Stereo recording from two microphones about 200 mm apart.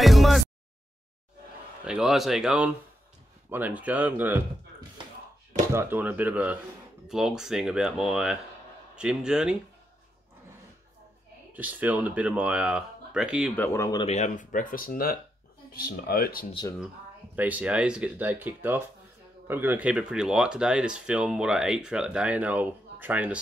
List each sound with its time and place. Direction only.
0.0 s a sound: centre (ahead or behind)
1.9 s speech: 5° right (ahead or behind)
5.7 s speech: 10° right (ahead or behind)
11.5 s speech: 10° right (ahead or behind)
13.6 s speech: 15° left (ahead or behind)
14.0 s speech: 35° left (ahead or behind)
17.4 s speech: 5° right (ahead or behind)